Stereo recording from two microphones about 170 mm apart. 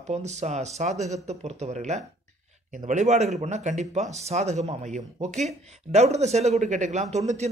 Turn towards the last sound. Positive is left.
turn(degrees=-40)  # may be behind; listen again after turning